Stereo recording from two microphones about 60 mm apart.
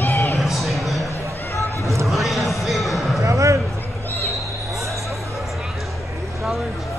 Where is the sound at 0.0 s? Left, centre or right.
Left.